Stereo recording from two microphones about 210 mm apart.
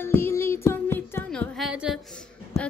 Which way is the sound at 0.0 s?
10° left (ahead or behind).